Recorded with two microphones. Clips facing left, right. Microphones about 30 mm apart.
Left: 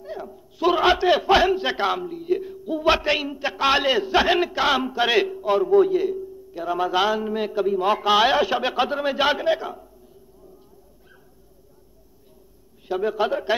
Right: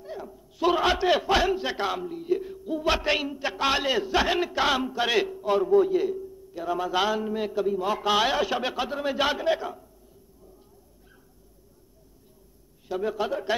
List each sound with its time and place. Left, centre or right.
0.0 s speech: centre
2.0 s a man's voice: centre
5.9 s a sound: centre
7.0 s speech: centre
7.3 s speech: centre
12.8 s speech: centre